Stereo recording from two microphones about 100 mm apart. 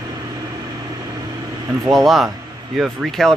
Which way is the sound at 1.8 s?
Centre (ahead or behind).